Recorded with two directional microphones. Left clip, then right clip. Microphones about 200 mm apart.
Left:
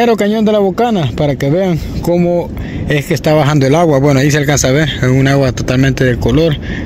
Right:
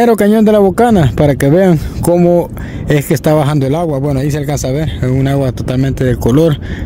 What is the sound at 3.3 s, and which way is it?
Speech, 15° right (ahead or behind).